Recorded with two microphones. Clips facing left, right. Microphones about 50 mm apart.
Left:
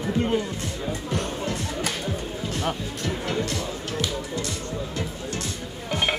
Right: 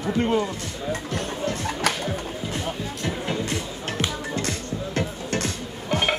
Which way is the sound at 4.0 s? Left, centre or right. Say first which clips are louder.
Right 2 dB; right.